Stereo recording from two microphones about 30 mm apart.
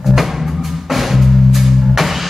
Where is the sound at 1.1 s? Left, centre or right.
Centre.